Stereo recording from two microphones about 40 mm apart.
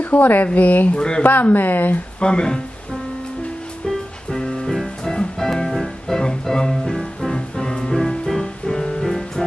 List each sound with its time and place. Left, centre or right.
0.0 s speech: left
1.2 s speech: left
2.1 s speech: left
4.3 s music: centre
7.3 s music: centre